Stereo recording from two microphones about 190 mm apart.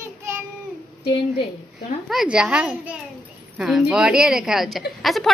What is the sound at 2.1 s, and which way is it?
A woman's voice, 5° right (ahead or behind).